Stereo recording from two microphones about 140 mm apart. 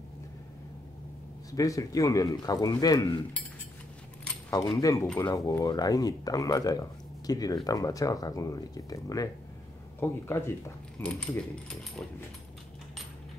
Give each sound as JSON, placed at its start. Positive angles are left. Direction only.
{"t": 1.5, "sound": "speech", "side_deg": 25}
{"t": 4.5, "sound": "speech", "side_deg": 30}